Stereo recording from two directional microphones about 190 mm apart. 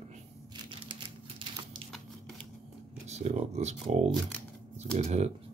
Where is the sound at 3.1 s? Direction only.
35° right (ahead or behind).